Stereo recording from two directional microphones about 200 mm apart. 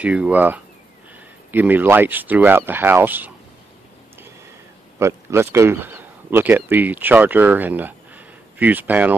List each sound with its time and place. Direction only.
0.0 s speech: 5° right (ahead or behind)
4.9 s a man's voice: 15° right (ahead or behind)